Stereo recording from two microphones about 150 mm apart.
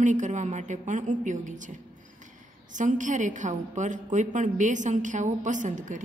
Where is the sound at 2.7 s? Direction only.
55° right (ahead or behind).